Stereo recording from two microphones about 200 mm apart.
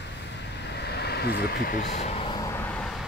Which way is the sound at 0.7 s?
55° left (ahead or behind).